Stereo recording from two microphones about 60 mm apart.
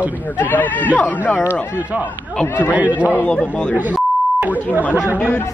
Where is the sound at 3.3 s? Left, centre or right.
Centre.